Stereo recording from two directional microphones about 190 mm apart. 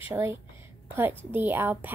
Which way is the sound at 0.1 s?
15° right (ahead or behind).